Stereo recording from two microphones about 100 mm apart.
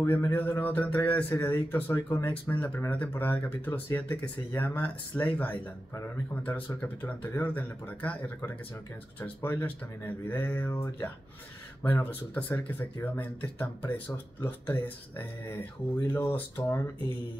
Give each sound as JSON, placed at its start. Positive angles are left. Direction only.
{"t": 0.0, "sound": "a man's voice", "side_deg": 25}
{"t": 9.2, "sound": "a man's voice", "side_deg": 20}